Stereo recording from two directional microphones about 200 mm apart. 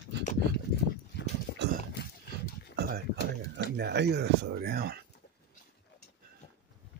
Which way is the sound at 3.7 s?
55° right (ahead or behind).